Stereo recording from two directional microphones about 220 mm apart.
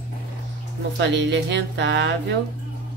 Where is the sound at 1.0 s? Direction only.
55° right (ahead or behind).